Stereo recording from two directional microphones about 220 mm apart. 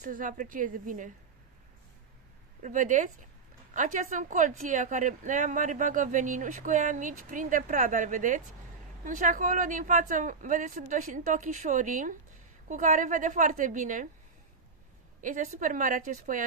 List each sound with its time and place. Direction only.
0.0 s a woman's voice: 40° right (ahead or behind)
2.6 s a woman's voice: 35° right (ahead or behind)
15.2 s a woman's voice: 35° right (ahead or behind)